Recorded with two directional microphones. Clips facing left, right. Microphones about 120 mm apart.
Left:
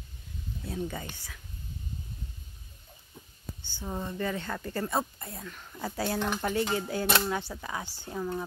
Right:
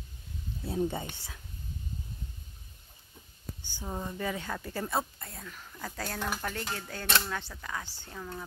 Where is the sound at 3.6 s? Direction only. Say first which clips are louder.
Left 2 dB; 15° right (ahead or behind); by 6.1 s 10° left (ahead or behind).